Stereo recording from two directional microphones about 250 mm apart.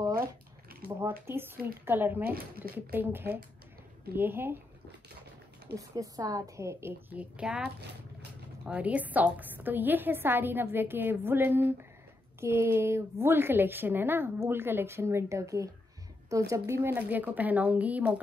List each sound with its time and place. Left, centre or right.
0.7 s a sound: right
1.2 s a woman's voice: centre
2.3 s speech: right
2.9 s a woman's voice: centre
5.8 s a woman's voice: centre